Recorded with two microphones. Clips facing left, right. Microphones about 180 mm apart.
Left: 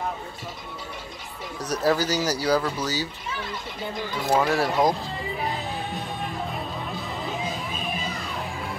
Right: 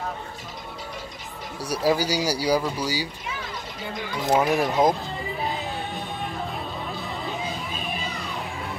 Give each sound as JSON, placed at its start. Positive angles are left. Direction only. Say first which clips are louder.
{"t": 1.6, "sound": "speech", "louder": "even", "side_deg": -10}
{"t": 4.1, "sound": "speech", "louder": "right 1 dB", "side_deg": -20}
{"t": 6.9, "sound": "music", "louder": "even", "side_deg": 0}